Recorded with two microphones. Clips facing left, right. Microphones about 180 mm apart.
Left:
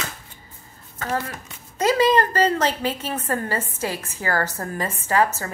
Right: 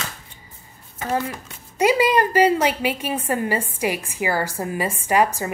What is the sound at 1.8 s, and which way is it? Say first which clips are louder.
A woman's voice: right 1 dB; 10° right (ahead or behind).